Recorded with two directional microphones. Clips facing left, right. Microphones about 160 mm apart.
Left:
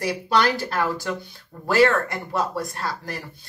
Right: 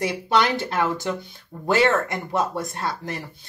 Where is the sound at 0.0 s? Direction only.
20° right (ahead or behind).